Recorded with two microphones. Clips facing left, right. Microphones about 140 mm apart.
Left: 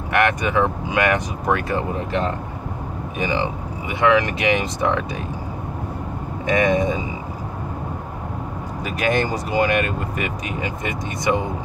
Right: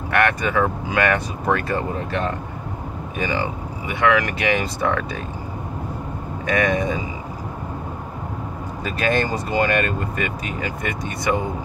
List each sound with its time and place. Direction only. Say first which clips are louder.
0.1 s speech: left 1 dB; 15° left (ahead or behind)
6.4 s speech: left 2 dB; 20° left (ahead or behind)
8.8 s speech: even; 15° left (ahead or behind)